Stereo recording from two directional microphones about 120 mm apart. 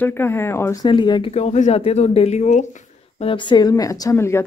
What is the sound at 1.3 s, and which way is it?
Speech, 70° left (ahead or behind).